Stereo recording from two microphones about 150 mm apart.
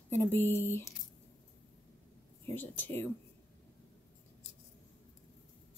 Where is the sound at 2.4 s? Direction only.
15° left (ahead or behind).